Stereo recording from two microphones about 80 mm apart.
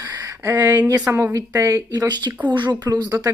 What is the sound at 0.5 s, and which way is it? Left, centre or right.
Speech, right.